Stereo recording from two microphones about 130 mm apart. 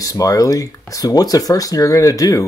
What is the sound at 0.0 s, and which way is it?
Speech, 25° left (ahead or behind).